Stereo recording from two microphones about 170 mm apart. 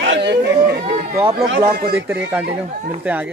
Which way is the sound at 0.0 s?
85° right.